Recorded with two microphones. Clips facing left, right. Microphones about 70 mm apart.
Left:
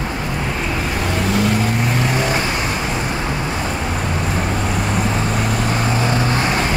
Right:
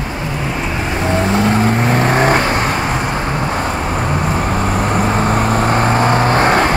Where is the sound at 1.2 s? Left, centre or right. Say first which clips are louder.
Right 3 dB; right.